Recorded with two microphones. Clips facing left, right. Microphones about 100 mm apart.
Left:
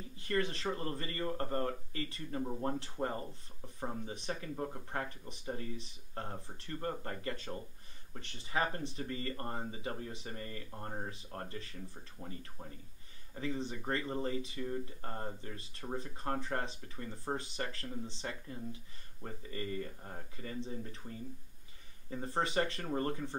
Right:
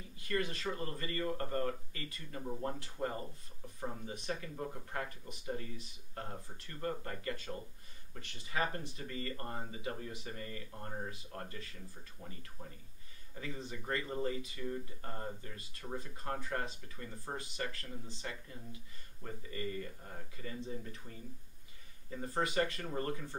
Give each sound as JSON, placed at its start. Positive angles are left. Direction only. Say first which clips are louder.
{"t": 0.2, "sound": "speech", "louder": "left 2 dB", "side_deg": 25}
{"t": 12.2, "sound": "speech", "louder": "left 4 dB", "side_deg": 15}
{"t": 13.3, "sound": "speech", "louder": "left 6 dB", "side_deg": 25}
{"t": 22.1, "sound": "speech", "louder": "left 1 dB", "side_deg": 25}